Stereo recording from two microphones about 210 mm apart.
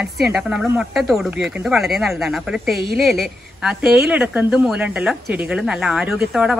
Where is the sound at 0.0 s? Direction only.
5° right (ahead or behind).